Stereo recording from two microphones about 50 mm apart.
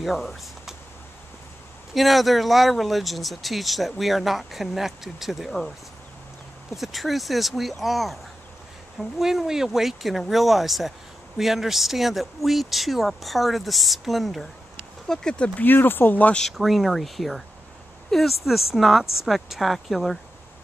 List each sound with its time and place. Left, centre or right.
0.0 s speech: centre
2.0 s speech: centre
6.8 s speech: centre
15.0 s speech: centre
15.5 s speech: left
16.5 s speech: centre